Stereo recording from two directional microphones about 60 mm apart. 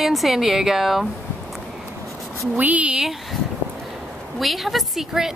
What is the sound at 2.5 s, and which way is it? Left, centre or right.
Speech, right.